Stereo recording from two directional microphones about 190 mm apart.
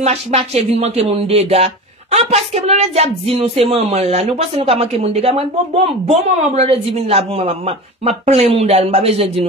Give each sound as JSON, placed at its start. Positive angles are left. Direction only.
{"t": 0.0, "sound": "speech", "side_deg": -35}